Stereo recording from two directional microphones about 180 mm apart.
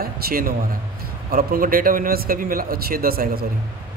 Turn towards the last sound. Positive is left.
turn(degrees=-55)  # may be behind; listen again after turning